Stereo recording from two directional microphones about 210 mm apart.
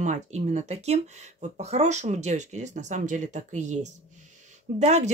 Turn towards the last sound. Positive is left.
turn(degrees=-30)  # may be behind; listen again after turning